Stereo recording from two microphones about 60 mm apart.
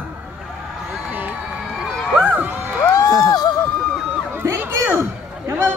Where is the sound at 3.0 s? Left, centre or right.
Left.